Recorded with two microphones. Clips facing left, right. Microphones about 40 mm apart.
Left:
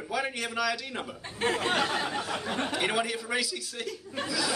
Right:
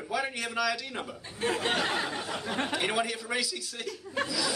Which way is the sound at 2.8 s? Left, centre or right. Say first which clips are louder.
Left 1 dB; centre.